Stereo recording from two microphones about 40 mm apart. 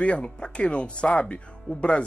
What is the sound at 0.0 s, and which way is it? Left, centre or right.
Speech, left.